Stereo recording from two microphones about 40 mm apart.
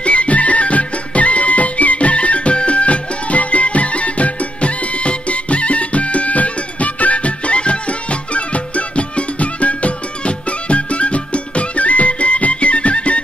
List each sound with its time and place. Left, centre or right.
0.0 s music: left